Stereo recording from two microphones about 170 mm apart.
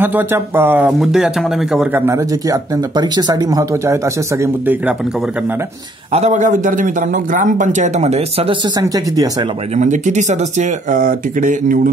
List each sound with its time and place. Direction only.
0.0 s speech: 10° right (ahead or behind)
2.0 s speech: 20° right (ahead or behind)
6.1 s a man's voice: 45° right (ahead or behind)
8.7 s speech: 20° right (ahead or behind)
9.8 s a man's voice: 45° right (ahead or behind)